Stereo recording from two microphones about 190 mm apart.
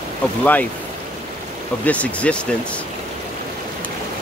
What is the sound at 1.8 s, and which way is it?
Speech, 5° left (ahead or behind).